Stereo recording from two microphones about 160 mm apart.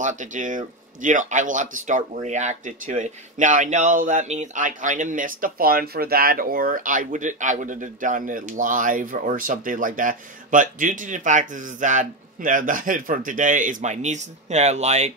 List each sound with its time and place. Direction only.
0.0 s speech: 50° right (ahead or behind)